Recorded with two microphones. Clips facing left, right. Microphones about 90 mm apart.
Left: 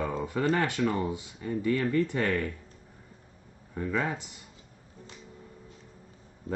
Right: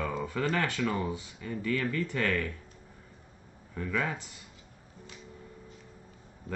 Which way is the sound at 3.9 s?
25° left (ahead or behind).